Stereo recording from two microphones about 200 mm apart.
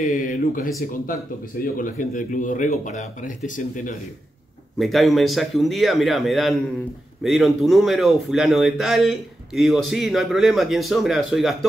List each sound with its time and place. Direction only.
0.0 s speech: 45° left (ahead or behind)
4.7 s a man's voice: centre (ahead or behind)